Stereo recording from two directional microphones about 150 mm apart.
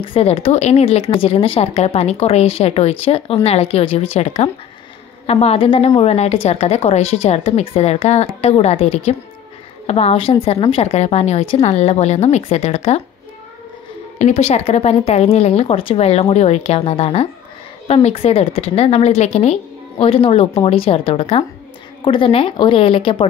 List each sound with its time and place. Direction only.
0.0 s speech: 40° left (ahead or behind)
14.1 s speech: 55° left (ahead or behind); by 23.2 s 35° left (ahead or behind)